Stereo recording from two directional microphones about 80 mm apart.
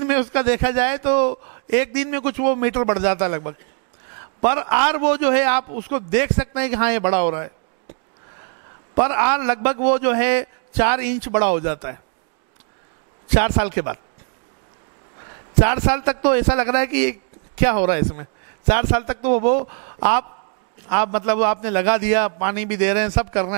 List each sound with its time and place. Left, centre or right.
0.0 s a man's voice: centre
8.9 s a man's voice: centre
13.3 s a man's voice: centre
15.5 s a man's voice: centre